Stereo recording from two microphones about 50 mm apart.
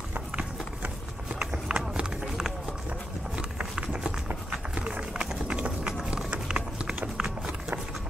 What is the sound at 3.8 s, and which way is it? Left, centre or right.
Run, right.